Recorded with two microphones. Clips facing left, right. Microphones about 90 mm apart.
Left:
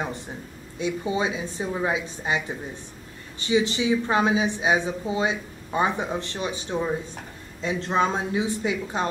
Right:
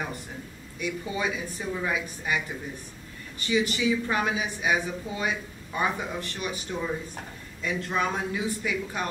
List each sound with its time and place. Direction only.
0.7 s speech: 25° left (ahead or behind)